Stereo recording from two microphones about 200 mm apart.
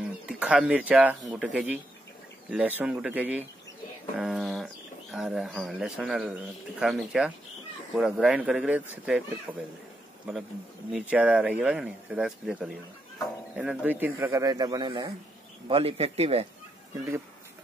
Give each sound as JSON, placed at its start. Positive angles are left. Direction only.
{"t": 0.3, "sound": "speech", "side_deg": -5}
{"t": 4.2, "sound": "a sound", "side_deg": 0}
{"t": 5.1, "sound": "speech", "side_deg": 0}
{"t": 10.9, "sound": "a man's voice", "side_deg": -5}